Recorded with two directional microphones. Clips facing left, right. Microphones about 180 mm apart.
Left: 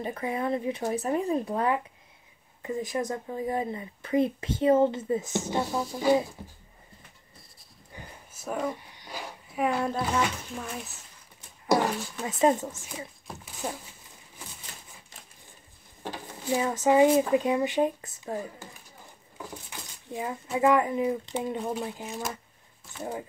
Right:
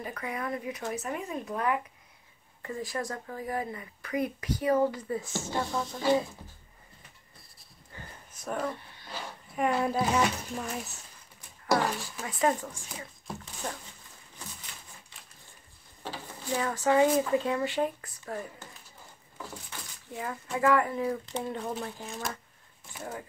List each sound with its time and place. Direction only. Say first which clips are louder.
0.0 s speech: left 5 dB; 25° left (ahead or behind)
2.6 s speech: left 4 dB; 20° left (ahead or behind)
7.9 s a sound: left 2 dB; 15° left (ahead or behind)
9.6 s speech: even; centre (ahead or behind)
11.6 s speech: left 3 dB; 20° left (ahead or behind)
13.6 s speech: left 3 dB; 10° left (ahead or behind)
16.0 s speech: left 2 dB; 15° left (ahead or behind)
19.3 s a sound: left 2 dB; 15° left (ahead or behind)
20.5 s speech: left 3 dB; 20° left (ahead or behind)